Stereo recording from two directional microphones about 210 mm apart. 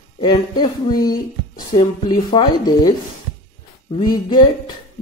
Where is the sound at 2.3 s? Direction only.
20° left (ahead or behind).